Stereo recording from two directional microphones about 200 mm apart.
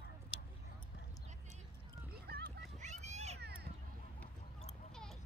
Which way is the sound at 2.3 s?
50° right (ahead or behind).